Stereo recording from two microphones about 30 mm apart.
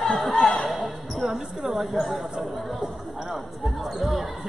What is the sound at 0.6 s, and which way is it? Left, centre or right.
Basketball bounce, centre.